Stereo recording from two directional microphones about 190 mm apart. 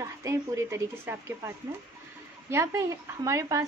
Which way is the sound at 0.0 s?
15° right (ahead or behind).